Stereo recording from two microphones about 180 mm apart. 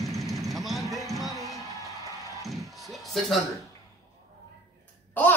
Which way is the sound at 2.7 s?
Centre (ahead or behind).